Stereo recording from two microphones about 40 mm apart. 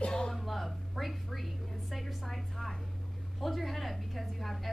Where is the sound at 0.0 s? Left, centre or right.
Left.